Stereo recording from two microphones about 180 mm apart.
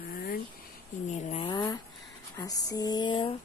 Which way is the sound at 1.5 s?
25° left (ahead or behind).